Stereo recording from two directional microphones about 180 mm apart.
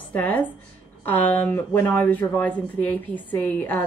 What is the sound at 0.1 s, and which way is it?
Speech, 10° left (ahead or behind).